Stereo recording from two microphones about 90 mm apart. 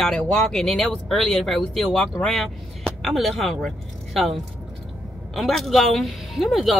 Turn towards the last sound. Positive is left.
turn(degrees=0)  # may be behind; listen again after turning